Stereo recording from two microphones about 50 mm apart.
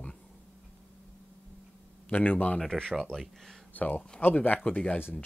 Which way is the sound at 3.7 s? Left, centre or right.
Left.